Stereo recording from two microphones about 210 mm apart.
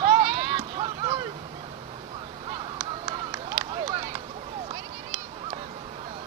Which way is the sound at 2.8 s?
20° right (ahead or behind).